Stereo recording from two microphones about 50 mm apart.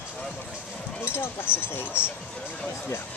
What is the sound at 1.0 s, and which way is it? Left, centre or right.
Speech, left.